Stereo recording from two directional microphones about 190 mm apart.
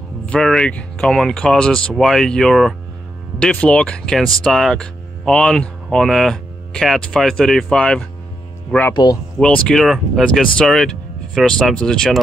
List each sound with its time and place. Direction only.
0.3 s speech: 5° left (ahead or behind)
8.9 s speech: 20° left (ahead or behind)
9.7 s speech: centre (ahead or behind)